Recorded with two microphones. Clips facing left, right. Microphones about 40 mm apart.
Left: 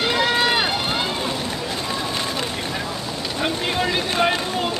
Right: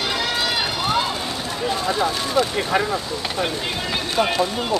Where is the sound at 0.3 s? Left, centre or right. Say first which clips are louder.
Left 4 dB; left.